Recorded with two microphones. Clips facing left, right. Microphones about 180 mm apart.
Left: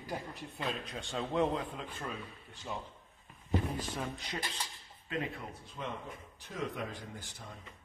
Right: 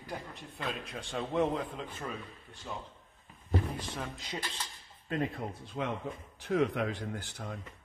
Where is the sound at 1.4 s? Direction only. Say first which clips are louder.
Right 2 dB; 10° right (ahead or behind).